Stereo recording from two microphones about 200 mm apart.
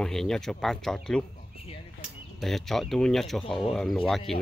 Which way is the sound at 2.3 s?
Centre (ahead or behind).